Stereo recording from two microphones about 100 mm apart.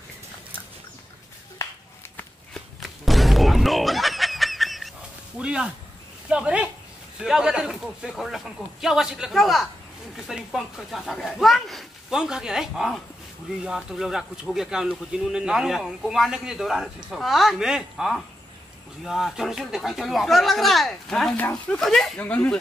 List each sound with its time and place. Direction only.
2.5 s fowl: centre (ahead or behind)
5.4 s speech: 10° right (ahead or behind)
21.4 s speech: 15° left (ahead or behind)
21.7 s speech: 5° left (ahead or behind)
22.2 s speech: 15° left (ahead or behind)